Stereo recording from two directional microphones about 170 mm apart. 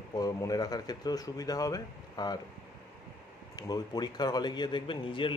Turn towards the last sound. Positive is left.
turn(degrees=30)  # may be behind; listen again after turning